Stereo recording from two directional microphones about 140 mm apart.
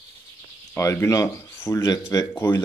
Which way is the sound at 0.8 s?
20° left (ahead or behind).